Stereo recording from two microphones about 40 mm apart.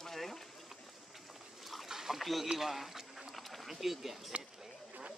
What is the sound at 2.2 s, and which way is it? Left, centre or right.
Speech, centre.